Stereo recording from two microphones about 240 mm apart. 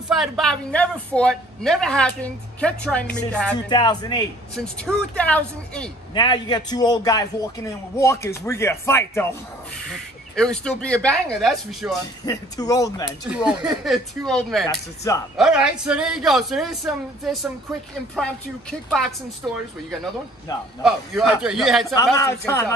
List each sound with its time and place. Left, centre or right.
0.1 s a man's voice: centre
3.6 s a man's voice: centre
4.6 s a man's voice: centre
6.1 s a man's voice: centre
12.3 s a man's voice: centre
13.3 s a man's voice: centre
20.8 s a man's voice: centre
21.9 s a man's voice: centre